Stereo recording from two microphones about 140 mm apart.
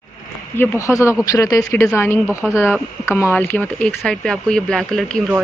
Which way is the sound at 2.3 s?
10° right (ahead or behind).